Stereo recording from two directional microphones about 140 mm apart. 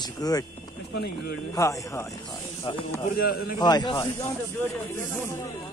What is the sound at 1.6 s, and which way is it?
Speech, 20° left (ahead or behind).